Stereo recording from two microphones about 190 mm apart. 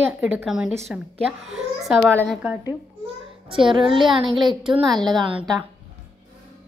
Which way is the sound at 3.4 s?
25° right (ahead or behind).